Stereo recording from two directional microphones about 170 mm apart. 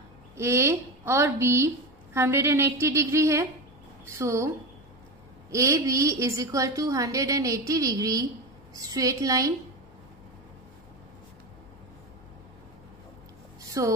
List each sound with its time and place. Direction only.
0.4 s a woman's voice: 15° right (ahead or behind)
5.5 s a woman's voice: 15° right (ahead or behind)
13.6 s a sound: 20° right (ahead or behind)